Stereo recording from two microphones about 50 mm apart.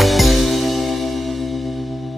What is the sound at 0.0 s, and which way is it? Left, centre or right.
Music, centre.